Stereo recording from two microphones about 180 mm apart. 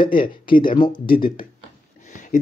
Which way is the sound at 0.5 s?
50° left (ahead or behind).